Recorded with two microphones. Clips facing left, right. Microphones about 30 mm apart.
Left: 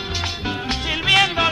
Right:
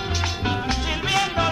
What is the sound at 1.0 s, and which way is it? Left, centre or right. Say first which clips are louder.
Music: left 6 dB; left.